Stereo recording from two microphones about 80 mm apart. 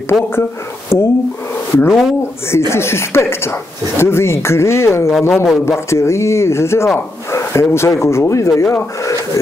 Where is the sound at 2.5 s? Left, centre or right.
Left.